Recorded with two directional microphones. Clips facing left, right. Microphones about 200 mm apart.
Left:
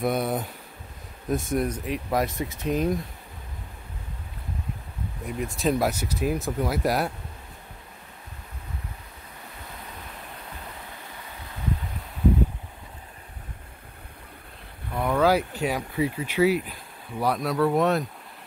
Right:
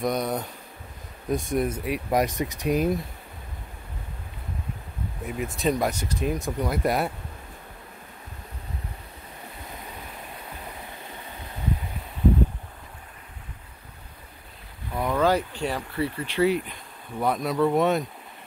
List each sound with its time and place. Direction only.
0.0 s speech: 5° left (ahead or behind)
2.0 s speech: 15° right (ahead or behind)
5.2 s speech: centre (ahead or behind)
15.0 s a sound: 5° left (ahead or behind)
16.6 s speech: centre (ahead or behind)